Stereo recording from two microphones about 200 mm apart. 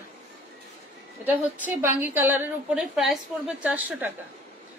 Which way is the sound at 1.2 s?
10° right (ahead or behind).